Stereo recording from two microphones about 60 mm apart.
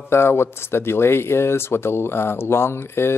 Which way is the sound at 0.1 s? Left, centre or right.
Left.